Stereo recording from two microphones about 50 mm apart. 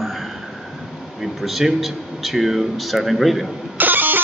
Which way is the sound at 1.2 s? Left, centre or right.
Centre.